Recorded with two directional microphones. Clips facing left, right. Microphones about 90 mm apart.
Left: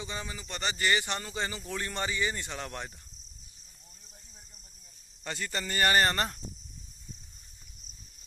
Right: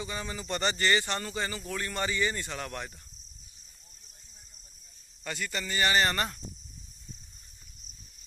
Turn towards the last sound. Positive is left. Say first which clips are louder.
# even
turn(degrees=30)  # may be behind; listen again after turning